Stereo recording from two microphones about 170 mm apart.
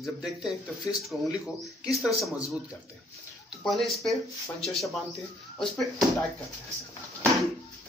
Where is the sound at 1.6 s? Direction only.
Centre (ahead or behind).